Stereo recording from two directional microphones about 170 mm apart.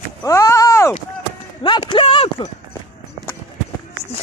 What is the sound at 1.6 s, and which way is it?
Clip-clop, 30° left (ahead or behind).